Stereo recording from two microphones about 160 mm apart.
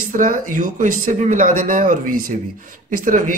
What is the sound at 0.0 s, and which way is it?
Speech, 60° right (ahead or behind).